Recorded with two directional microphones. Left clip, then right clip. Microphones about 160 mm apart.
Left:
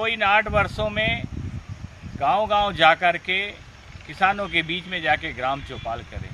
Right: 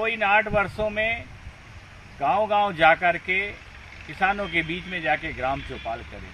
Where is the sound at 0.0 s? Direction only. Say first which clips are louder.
Left 1 dB; 15° left (ahead or behind).